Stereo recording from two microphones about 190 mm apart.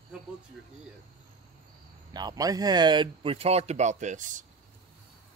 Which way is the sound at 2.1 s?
20° right (ahead or behind).